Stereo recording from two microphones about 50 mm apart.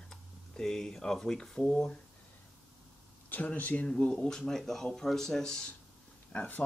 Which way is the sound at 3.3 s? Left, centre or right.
Left.